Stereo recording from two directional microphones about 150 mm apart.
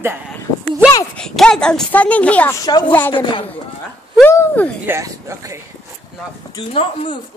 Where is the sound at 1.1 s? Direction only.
5° left (ahead or behind).